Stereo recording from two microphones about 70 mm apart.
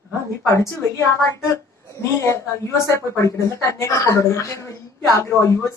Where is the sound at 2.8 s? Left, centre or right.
Left.